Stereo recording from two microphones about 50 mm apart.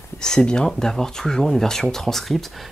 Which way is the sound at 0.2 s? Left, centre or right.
Centre.